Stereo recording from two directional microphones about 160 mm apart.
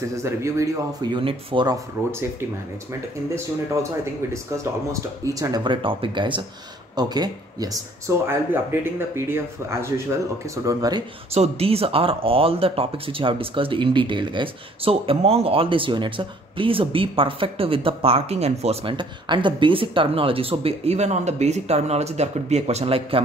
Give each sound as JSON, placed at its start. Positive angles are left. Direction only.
{"t": 0.1, "sound": "speech", "side_deg": -20}
{"t": 4.0, "sound": "speech", "side_deg": -20}
{"t": 11.3, "sound": "speech", "side_deg": -40}